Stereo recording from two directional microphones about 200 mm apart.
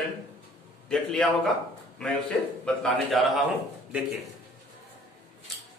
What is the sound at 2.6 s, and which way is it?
Speech, centre (ahead or behind).